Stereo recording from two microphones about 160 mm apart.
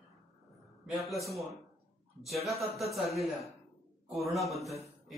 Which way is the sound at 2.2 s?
Centre (ahead or behind).